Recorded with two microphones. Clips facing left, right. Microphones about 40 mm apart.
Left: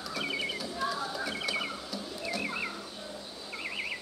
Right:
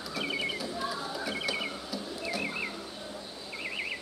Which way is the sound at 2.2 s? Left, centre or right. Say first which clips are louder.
Even; centre.